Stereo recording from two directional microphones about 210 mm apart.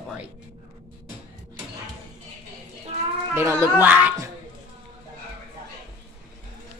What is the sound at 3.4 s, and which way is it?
Speech, 10° right (ahead or behind).